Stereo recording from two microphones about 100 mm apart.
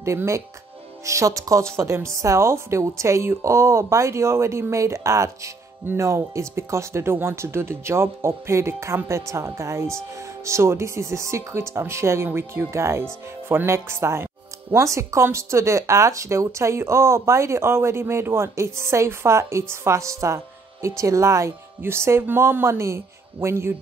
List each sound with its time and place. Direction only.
0.0 s speech: 30° right (ahead or behind)